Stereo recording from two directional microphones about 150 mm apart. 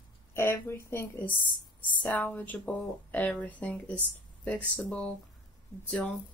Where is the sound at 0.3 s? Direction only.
15° left (ahead or behind).